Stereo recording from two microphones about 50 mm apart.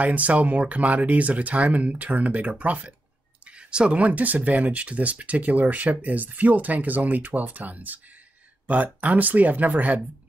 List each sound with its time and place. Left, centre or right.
0.0 s speech: right
3.4 s speech: right